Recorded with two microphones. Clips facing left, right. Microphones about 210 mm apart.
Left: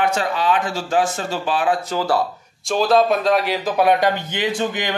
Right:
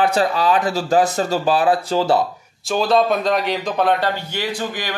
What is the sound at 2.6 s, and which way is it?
A man's voice, centre (ahead or behind).